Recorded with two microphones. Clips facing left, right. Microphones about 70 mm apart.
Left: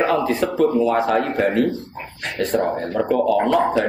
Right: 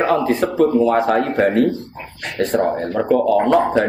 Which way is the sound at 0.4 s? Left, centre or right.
Right.